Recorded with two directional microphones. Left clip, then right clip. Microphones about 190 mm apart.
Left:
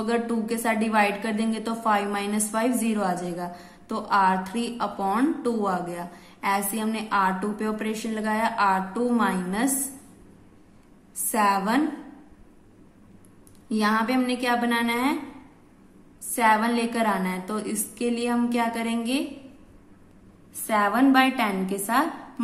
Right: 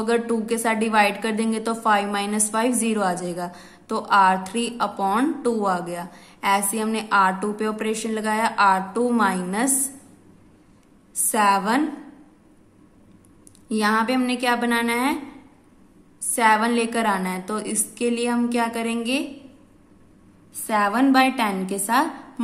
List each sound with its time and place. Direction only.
0.0 s a woman's voice: 20° right (ahead or behind)
11.2 s a woman's voice: 20° right (ahead or behind)
13.7 s a woman's voice: 20° right (ahead or behind)
16.3 s a woman's voice: 20° right (ahead or behind)
20.6 s a woman's voice: 15° right (ahead or behind)